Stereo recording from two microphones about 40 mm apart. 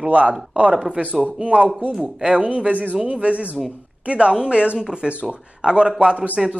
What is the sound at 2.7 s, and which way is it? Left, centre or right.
Speech, right.